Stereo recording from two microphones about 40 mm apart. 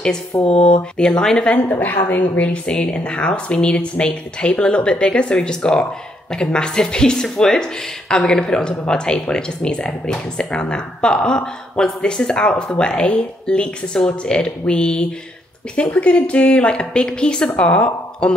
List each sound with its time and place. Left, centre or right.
0.5 s speech: left
1.6 s a woman's voice: left